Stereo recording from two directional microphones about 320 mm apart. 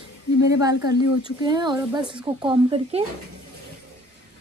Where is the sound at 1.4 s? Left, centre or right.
Centre.